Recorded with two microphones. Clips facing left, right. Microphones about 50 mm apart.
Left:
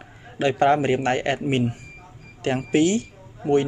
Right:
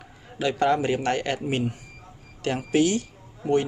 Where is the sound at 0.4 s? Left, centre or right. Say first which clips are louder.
Left 4 dB; left.